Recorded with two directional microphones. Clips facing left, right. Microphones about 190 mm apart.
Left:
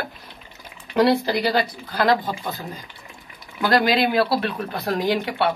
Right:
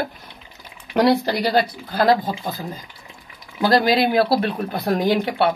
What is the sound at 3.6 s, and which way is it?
Speech, 40° right (ahead or behind).